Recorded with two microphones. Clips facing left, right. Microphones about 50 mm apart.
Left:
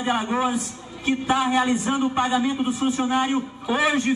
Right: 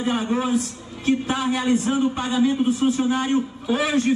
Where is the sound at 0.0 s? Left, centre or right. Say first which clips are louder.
Even; centre.